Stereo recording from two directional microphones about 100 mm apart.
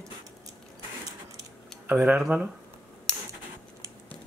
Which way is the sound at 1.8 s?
15° right (ahead or behind).